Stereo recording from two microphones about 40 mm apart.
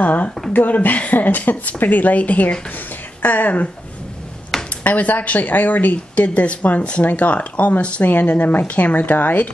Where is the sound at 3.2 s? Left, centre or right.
Left.